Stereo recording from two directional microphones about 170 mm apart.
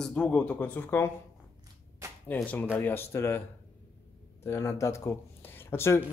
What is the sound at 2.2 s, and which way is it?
Speech, 10° left (ahead or behind).